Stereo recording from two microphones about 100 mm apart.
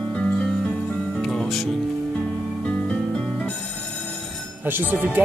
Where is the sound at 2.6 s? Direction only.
10° left (ahead or behind).